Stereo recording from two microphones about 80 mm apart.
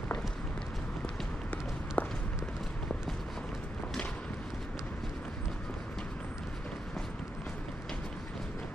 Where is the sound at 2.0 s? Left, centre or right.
Left.